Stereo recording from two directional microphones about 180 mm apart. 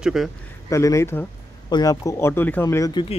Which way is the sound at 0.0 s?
Centre (ahead or behind).